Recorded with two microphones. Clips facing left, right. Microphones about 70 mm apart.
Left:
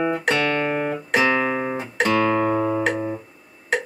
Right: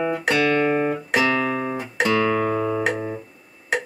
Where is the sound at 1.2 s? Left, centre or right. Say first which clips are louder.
Left 2 dB; left.